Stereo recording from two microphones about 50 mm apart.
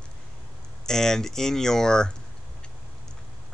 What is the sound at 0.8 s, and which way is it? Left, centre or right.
Speech, centre.